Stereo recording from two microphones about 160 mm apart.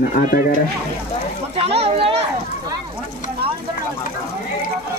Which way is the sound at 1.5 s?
40° right (ahead or behind).